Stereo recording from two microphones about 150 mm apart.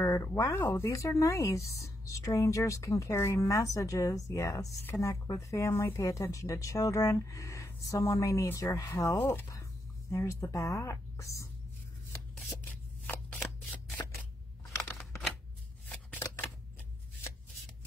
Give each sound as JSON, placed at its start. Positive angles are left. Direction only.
{"t": 0.0, "sound": "speech", "side_deg": 20}
{"t": 13.0, "sound": "shuffling cards", "side_deg": 10}
{"t": 14.8, "sound": "a sound", "side_deg": 0}